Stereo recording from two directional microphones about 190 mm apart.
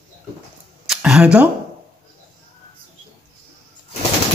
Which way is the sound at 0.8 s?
5° right (ahead or behind).